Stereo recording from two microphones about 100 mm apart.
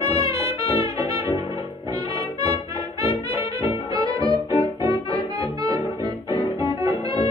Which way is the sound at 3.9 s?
40° right (ahead or behind).